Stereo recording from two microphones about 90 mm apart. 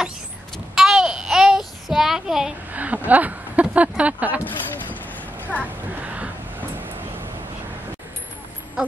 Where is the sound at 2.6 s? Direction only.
20° right (ahead or behind).